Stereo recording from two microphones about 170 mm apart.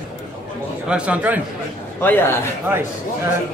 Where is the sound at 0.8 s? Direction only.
5° right (ahead or behind).